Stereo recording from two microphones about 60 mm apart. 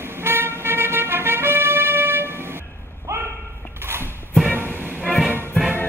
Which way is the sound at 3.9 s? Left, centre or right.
Right.